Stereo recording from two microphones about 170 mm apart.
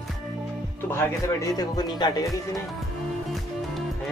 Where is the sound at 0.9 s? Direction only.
15° left (ahead or behind).